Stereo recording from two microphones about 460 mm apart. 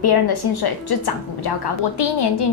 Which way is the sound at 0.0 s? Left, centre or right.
Left.